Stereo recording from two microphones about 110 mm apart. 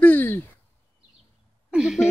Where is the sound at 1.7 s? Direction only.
5° right (ahead or behind).